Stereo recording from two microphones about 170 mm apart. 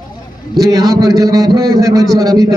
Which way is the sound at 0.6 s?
20° right (ahead or behind).